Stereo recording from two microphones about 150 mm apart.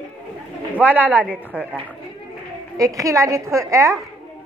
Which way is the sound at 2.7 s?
20° right (ahead or behind).